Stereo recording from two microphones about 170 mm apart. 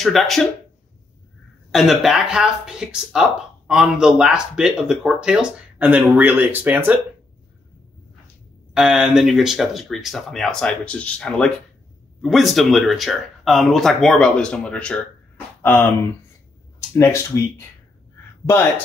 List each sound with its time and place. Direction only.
0.0 s speech: centre (ahead or behind)
1.7 s speech: centre (ahead or behind)
8.7 s speech: 5° right (ahead or behind); by 15.9 s 10° left (ahead or behind)
16.9 s speech: 15° left (ahead or behind)